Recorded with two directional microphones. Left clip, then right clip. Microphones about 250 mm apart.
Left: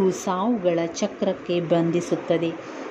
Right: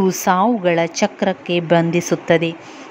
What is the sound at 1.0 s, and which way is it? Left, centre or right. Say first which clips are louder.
Speech: right 6 dB; centre.